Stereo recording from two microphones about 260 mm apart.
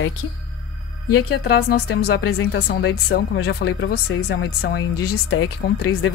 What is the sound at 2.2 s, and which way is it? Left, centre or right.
Speech, left.